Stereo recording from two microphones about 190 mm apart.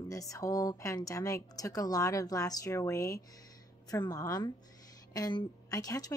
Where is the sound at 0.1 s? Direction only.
15° left (ahead or behind).